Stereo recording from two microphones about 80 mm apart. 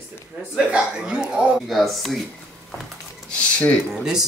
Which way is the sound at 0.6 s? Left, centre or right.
Centre.